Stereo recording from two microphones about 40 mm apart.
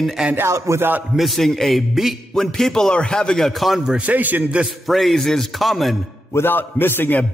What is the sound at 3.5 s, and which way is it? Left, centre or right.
Speech, centre.